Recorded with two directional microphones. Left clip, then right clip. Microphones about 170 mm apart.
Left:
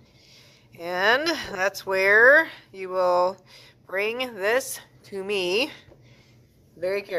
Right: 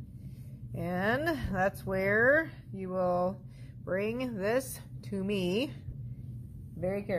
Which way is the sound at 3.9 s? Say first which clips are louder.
Left 7 dB; 10° left (ahead or behind).